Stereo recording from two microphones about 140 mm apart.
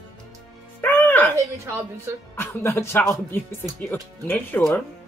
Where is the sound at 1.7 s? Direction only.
20° right (ahead or behind).